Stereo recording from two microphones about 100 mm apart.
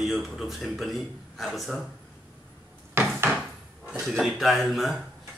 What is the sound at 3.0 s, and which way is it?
Wood, 25° right (ahead or behind).